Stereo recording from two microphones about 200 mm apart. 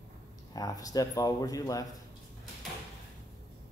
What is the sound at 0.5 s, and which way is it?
Speech, 20° left (ahead or behind).